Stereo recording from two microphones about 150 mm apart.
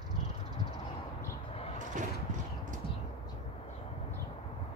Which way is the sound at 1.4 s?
40° left (ahead or behind).